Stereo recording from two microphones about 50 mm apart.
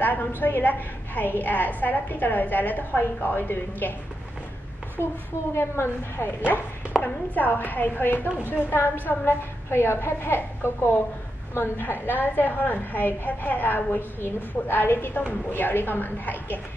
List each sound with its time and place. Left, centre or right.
0.4 s a woman's voice: left
5.0 s a woman's voice: left